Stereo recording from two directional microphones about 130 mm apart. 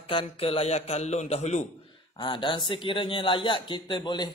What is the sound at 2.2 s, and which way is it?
Speech, 40° left (ahead or behind).